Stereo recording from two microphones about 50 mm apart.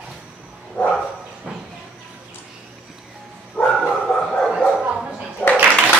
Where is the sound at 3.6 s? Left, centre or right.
Left.